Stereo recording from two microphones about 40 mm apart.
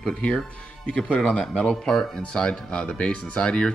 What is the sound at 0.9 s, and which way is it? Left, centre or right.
Speech, left.